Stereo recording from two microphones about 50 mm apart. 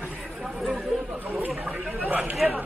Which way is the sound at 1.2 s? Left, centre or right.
Right.